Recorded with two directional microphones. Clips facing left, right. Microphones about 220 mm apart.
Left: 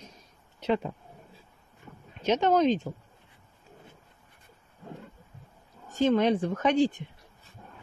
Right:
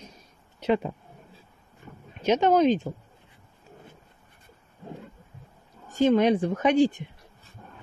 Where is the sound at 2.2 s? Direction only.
10° right (ahead or behind).